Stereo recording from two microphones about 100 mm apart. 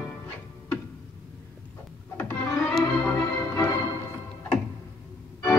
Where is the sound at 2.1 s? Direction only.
15° left (ahead or behind).